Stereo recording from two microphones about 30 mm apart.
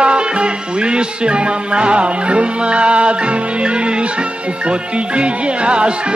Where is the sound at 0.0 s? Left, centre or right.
Right.